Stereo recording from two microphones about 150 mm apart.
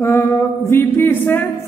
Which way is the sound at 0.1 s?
15° left (ahead or behind).